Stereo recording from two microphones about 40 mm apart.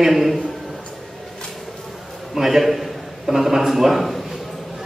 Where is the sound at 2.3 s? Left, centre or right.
Centre.